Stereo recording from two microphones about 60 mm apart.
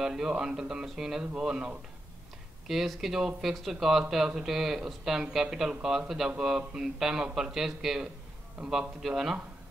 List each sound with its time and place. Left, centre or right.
0.0 s speech: centre
2.7 s speech: centre